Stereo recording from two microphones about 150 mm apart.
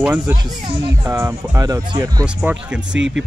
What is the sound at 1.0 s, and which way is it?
Speech, 20° right (ahead or behind).